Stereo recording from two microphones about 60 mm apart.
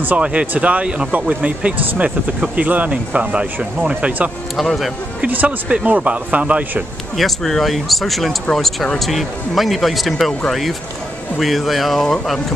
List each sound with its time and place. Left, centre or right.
0.0 s speech: right
4.6 s speech: centre
5.2 s speech: right
7.2 s speech: centre
11.3 s speech: centre